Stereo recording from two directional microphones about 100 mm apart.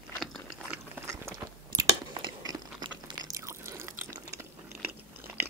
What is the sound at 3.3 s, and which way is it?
Drip, 30° right (ahead or behind).